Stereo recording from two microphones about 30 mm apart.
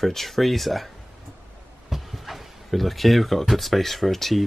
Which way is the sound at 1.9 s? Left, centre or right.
Centre.